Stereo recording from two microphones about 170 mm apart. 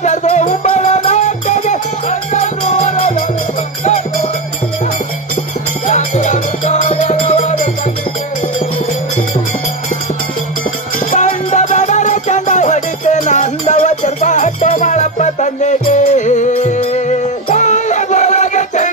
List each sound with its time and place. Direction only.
0.0 s music: 45° left (ahead or behind)
5.9 s music: 45° left (ahead or behind)
11.1 s music: 45° left (ahead or behind)